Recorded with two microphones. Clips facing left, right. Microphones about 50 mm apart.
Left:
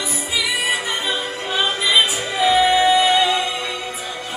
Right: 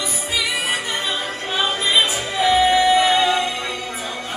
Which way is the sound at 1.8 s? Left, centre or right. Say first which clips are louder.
Left 2 dB; right.